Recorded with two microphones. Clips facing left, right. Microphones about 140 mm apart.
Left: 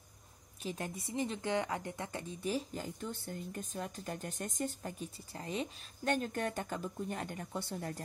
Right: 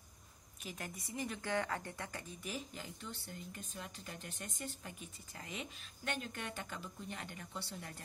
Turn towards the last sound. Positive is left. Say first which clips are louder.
# left 7 dB
turn(degrees=45)  # may be behind; listen again after turning